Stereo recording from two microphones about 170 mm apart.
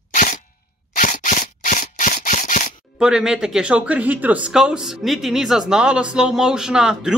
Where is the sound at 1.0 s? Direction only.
50° left (ahead or behind).